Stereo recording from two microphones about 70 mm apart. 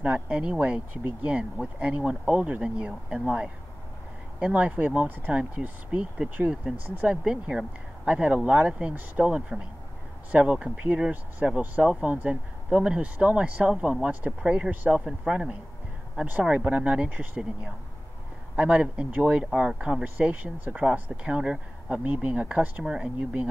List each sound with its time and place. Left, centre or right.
0.0 s speech: centre
14.7 s speech: right
15.0 s speech: centre
18.6 s speech: centre